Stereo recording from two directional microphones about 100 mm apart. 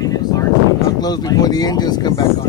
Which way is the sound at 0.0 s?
40° left (ahead or behind).